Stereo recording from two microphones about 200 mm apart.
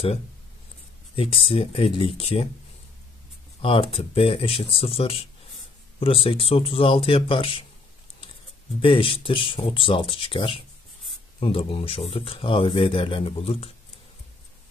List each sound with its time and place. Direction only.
1.1 s speech: 25° left (ahead or behind)
3.6 s speech: 25° left (ahead or behind)
8.8 s speech: 25° left (ahead or behind)